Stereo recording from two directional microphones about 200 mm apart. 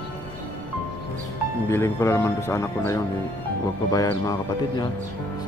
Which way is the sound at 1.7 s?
15° left (ahead or behind).